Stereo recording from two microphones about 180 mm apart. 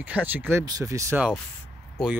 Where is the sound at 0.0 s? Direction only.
10° right (ahead or behind).